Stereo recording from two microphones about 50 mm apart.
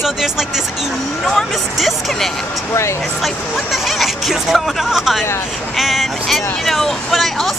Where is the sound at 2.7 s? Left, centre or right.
Left.